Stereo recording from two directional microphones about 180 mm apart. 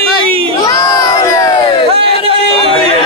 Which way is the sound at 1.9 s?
30° right (ahead or behind).